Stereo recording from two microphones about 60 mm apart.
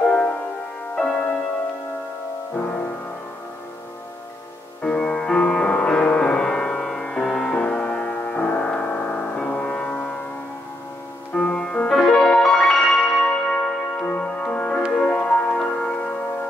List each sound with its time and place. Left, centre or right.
0.1 s music: centre
2.5 s music: left
4.8 s music: centre
11.3 s music: centre
11.9 s music: centre